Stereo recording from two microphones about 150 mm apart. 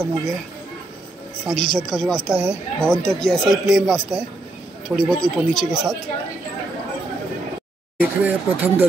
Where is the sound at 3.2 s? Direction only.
5° left (ahead or behind).